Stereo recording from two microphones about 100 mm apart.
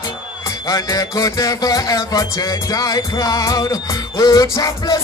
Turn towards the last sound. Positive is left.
turn(degrees=35)  # may be behind; listen again after turning